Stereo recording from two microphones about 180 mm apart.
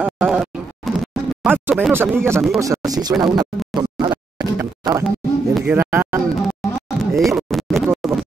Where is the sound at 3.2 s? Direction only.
25° right (ahead or behind).